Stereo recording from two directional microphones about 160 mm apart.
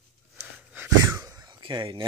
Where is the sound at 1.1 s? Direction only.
25° right (ahead or behind).